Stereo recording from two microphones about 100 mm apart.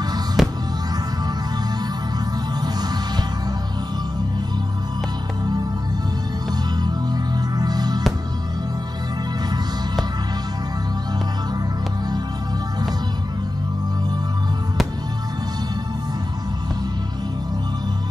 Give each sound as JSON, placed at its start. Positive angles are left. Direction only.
{"t": 0.4, "sound": "music", "side_deg": 0}
{"t": 2.6, "sound": "music", "side_deg": -45}
{"t": 6.8, "sound": "music", "side_deg": -45}